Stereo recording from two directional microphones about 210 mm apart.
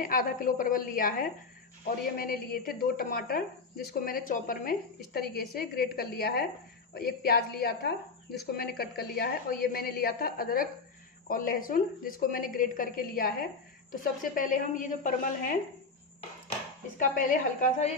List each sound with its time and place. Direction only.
0.0 s a woman's voice: 40° left (ahead or behind)
17.1 s a woman's voice: 40° left (ahead or behind)